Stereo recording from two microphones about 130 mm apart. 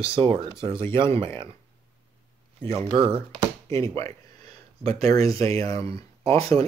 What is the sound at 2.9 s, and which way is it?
Speech, 40° right (ahead or behind).